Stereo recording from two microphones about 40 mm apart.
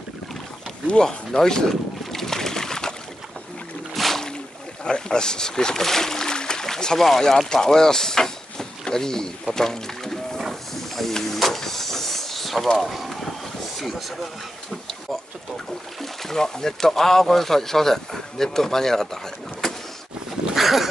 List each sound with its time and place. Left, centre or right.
1.0 s a sound: centre
3.9 s boat: centre
4.8 s a sound: left
7.0 s speech: centre
10.4 s hiss: centre
12.7 s boat: centre
13.7 s speech: centre
15.5 s speech: centre
19.6 s vehicle: centre
20.5 s dog: centre